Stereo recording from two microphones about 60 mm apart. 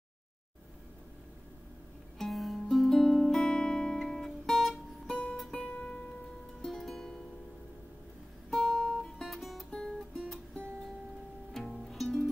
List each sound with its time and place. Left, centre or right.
2.1 s music: centre
8.5 s music: centre
9.7 s music: centre
11.5 s music: centre